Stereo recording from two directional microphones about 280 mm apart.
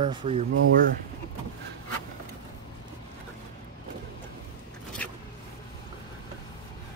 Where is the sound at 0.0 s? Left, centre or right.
Centre.